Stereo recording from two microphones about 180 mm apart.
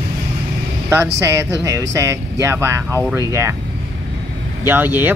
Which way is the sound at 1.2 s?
15° right (ahead or behind).